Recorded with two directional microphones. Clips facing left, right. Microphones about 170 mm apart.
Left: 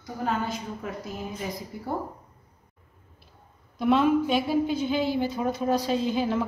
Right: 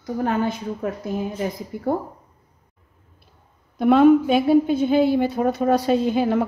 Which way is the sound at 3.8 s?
55° right (ahead or behind).